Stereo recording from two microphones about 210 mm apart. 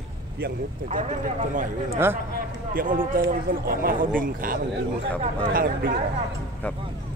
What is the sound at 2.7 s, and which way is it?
Speech, 40° right (ahead or behind).